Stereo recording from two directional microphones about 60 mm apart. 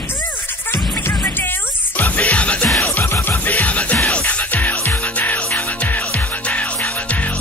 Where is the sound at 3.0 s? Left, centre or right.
Left.